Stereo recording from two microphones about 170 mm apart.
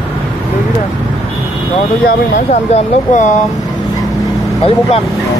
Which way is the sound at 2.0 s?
45° left (ahead or behind).